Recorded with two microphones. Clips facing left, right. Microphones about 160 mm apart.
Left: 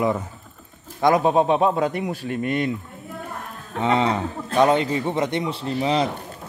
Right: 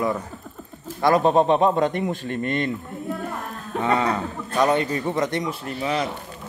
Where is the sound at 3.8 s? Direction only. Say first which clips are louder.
Left 2 dB; 20° left (ahead or behind).